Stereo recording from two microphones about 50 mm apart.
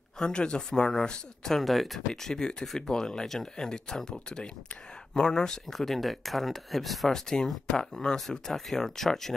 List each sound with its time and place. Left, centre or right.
0.2 s speech: centre
1.4 s speech: centre
5.8 s speech: centre
7.2 s speech: centre